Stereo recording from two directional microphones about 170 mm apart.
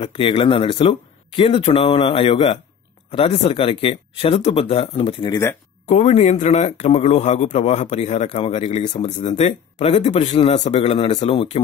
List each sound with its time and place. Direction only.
0.0 s a man's voice: 30° left (ahead or behind)
5.3 s speech: 15° left (ahead or behind)
5.9 s a man's voice: 45° left (ahead or behind)